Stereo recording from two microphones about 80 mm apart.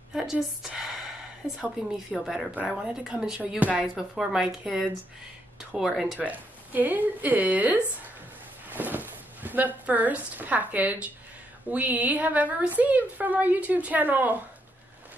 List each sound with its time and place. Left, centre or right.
0.1 s a woman's voice: centre
6.1 s a woman's voice: right
8.6 s a sound: right
9.8 s a woman's voice: centre